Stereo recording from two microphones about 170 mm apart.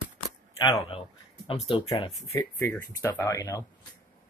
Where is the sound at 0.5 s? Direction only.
30° left (ahead or behind).